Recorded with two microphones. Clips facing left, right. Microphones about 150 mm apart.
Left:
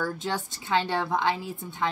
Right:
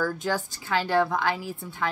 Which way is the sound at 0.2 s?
25° left (ahead or behind).